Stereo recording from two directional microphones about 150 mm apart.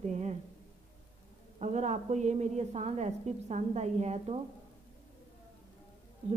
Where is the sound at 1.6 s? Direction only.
50° right (ahead or behind).